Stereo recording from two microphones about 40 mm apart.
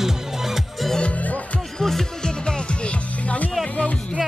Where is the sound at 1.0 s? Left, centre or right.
Left.